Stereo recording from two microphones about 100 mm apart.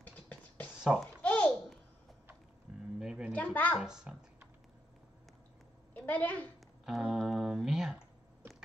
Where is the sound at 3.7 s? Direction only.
5° right (ahead or behind).